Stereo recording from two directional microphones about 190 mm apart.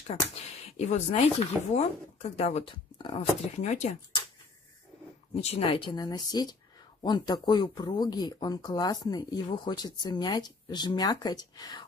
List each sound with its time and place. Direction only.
0.7 s speech: 35° left (ahead or behind)
5.3 s speech: 35° left (ahead or behind)